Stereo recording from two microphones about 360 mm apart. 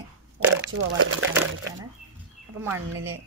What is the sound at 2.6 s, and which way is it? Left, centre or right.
Speech, centre.